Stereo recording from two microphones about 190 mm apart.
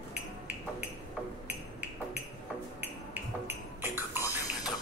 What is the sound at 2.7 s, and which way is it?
Music, 10° right (ahead or behind).